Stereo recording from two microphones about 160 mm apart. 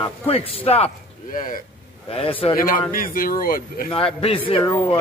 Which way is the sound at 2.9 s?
60° left (ahead or behind).